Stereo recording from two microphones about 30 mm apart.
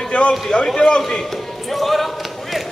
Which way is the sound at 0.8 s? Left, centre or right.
Left.